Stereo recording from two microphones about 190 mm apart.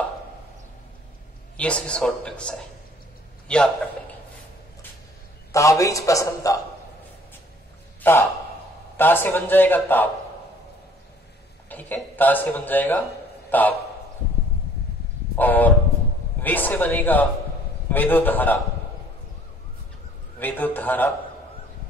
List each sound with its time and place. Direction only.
1.6 s a man's voice: 5° left (ahead or behind)
5.5 s a man's voice: 15° left (ahead or behind)
8.0 s a man's voice: 10° left (ahead or behind)
11.7 s a man's voice: 10° left (ahead or behind)
15.3 s a sound: 10° left (ahead or behind)
16.3 s a man's voice: 10° left (ahead or behind)
20.3 s a man's voice: 10° left (ahead or behind)